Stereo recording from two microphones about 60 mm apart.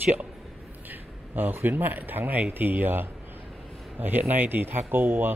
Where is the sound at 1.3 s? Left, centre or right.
Right.